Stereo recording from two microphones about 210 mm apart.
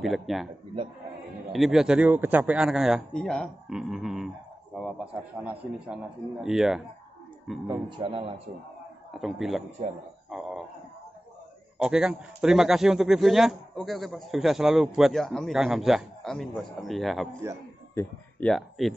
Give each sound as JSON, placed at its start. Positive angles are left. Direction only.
{"t": 0.0, "sound": "a man's voice", "side_deg": 0}
{"t": 1.5, "sound": "a man's voice", "side_deg": 0}
{"t": 8.0, "sound": "a man's voice", "side_deg": -25}
{"t": 9.1, "sound": "a man's voice", "side_deg": 0}
{"t": 11.8, "sound": "a man's voice", "side_deg": -5}